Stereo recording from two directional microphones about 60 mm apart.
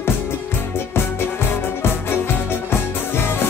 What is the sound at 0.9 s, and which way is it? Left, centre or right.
Music, left.